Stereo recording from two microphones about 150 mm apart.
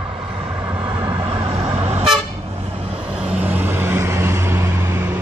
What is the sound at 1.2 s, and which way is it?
Vehicle, 40° right (ahead or behind).